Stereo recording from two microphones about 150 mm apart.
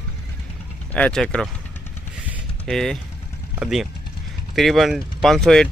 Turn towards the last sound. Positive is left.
turn(degrees=5)  # may be behind; listen again after turning